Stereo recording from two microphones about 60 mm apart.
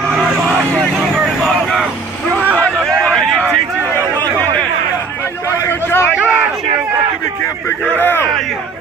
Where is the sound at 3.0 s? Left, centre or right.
Centre.